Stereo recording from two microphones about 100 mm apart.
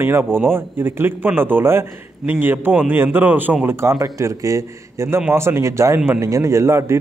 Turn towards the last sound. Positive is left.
turn(degrees=-25)  # may be behind; listen again after turning